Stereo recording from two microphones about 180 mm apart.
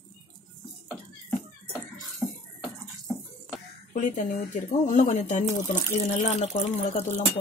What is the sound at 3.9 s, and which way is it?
Speech, 45° left (ahead or behind).